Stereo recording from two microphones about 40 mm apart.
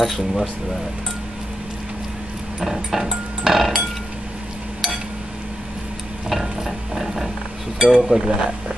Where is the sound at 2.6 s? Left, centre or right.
Centre.